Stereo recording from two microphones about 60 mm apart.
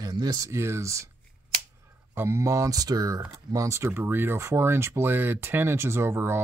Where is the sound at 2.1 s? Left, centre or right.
Right.